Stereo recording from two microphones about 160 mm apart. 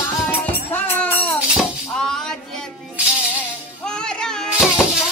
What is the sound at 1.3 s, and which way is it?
Music, 10° right (ahead or behind).